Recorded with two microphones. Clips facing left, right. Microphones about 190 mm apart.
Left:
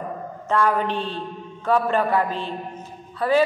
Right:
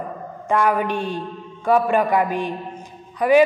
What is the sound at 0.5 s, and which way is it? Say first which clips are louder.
A man's voice: right 2 dB; 15° right (ahead or behind).